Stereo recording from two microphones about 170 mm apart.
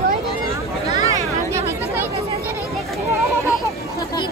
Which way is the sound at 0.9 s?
15° right (ahead or behind).